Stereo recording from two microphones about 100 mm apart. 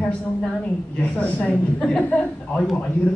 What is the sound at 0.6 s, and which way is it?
A woman's voice, 15° left (ahead or behind).